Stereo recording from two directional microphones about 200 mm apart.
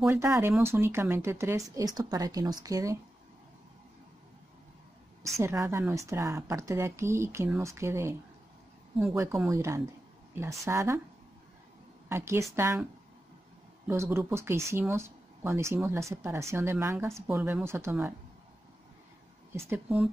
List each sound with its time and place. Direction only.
0.0 s speech: 10° right (ahead or behind)
5.3 s speech: 15° right (ahead or behind)
12.1 s speech: 15° right (ahead or behind)
13.8 s speech: 15° right (ahead or behind)
19.7 s speech: 10° right (ahead or behind)